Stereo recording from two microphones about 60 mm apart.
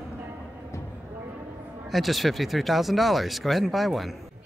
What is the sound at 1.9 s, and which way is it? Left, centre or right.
Speech, centre.